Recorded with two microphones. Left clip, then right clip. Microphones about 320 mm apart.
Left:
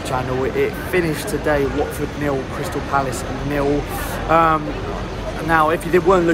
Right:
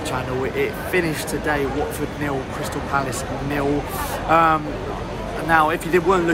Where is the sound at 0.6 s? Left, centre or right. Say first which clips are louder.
Left 1 dB; centre.